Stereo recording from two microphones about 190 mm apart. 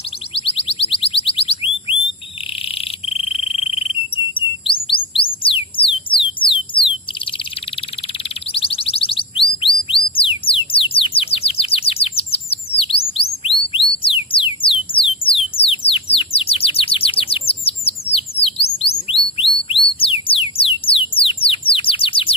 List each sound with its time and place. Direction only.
0.3 s alarm: 30° left (ahead or behind)
3.3 s frog: 30° left (ahead or behind)
4.6 s music: 25° left (ahead or behind)
8.5 s a sound: 30° left (ahead or behind)
13.4 s music: 30° left (ahead or behind)
21.2 s bird: 30° left (ahead or behind)